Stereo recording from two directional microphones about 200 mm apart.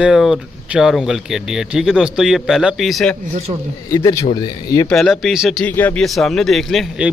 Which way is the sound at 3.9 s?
15° left (ahead or behind).